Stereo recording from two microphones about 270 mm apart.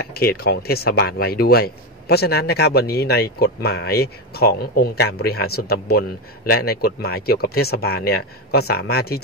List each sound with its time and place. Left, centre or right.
0.2 s speech: left